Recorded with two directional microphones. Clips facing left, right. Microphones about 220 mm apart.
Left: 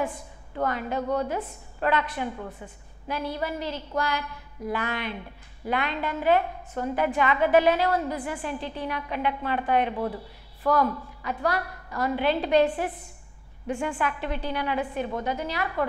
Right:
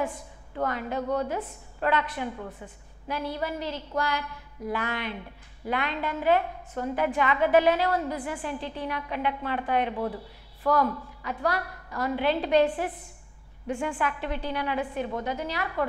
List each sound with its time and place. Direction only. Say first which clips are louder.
0.6 s a woman's voice: left 1 dB; 15° left (ahead or behind)